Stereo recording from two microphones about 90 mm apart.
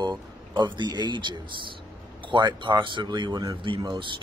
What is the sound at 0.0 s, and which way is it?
Speech, 55° right (ahead or behind).